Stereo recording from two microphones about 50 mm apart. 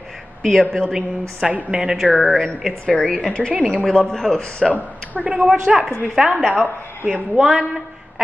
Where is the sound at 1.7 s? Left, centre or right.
Centre.